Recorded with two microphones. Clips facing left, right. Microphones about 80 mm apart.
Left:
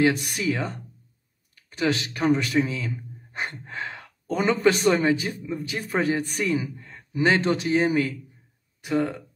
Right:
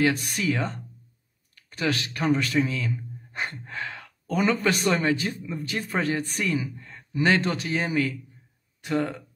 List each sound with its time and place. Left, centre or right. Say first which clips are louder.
0.5 s speech: left 1 dB; centre
1.5 s speech: left 3 dB; left